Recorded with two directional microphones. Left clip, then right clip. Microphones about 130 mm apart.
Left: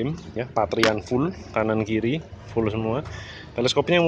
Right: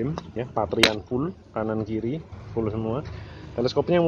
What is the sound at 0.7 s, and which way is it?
Speech, 20° left (ahead or behind).